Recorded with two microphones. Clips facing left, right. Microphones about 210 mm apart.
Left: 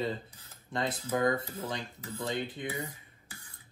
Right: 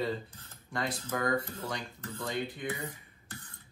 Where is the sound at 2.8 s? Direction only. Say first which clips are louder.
Left 1 dB; 10° left (ahead or behind).